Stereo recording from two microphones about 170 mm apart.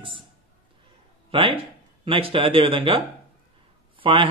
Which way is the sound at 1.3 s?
30° right (ahead or behind).